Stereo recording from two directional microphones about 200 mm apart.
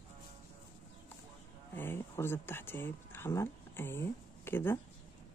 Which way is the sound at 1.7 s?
10° left (ahead or behind).